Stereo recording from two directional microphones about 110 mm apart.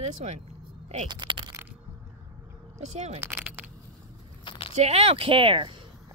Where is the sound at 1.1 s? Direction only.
45° right (ahead or behind).